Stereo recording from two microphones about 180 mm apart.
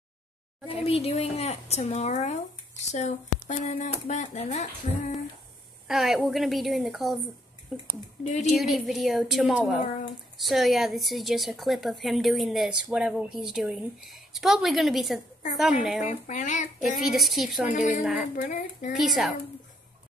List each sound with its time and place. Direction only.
0.8 s speech: 35° left (ahead or behind)
5.9 s speech: centre (ahead or behind)
8.2 s speech: 40° left (ahead or behind)
8.5 s speech: centre (ahead or behind)
16.0 s speech: 45° left (ahead or behind)
17.0 s speech: centre (ahead or behind)
17.7 s speech: 45° left (ahead or behind)
18.9 s speech: centre (ahead or behind)